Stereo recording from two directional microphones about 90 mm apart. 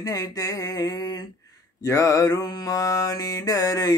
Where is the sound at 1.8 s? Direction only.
40° left (ahead or behind).